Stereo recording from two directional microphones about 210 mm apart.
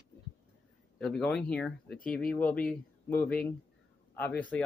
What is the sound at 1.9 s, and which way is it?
Speech, 40° left (ahead or behind).